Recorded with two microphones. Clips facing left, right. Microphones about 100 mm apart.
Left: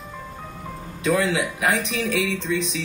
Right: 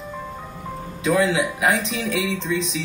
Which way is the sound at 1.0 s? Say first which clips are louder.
Right 2 dB; 25° right (ahead or behind).